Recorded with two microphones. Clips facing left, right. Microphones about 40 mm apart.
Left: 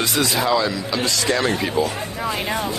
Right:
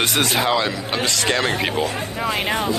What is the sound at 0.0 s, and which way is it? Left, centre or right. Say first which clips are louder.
Speech: right 1 dB; right.